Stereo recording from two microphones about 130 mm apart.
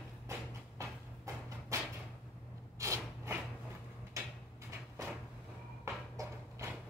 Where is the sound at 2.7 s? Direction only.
25° right (ahead or behind).